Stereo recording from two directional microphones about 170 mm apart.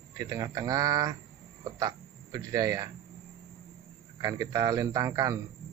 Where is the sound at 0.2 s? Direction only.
20° right (ahead or behind).